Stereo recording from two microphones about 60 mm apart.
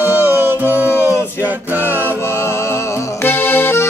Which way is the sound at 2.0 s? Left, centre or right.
Left.